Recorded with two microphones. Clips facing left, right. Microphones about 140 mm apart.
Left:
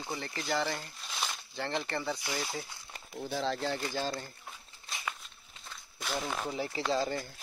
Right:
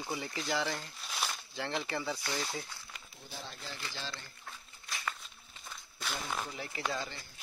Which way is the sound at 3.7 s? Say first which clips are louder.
Left 10 dB; 45° left (ahead or behind).